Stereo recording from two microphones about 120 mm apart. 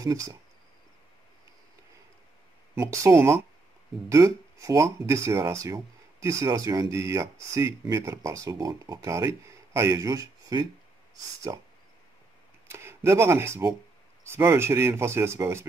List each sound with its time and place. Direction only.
0.0 s speech: 30° right (ahead or behind)
2.7 s speech: 25° right (ahead or behind)
12.6 s speech: 20° right (ahead or behind)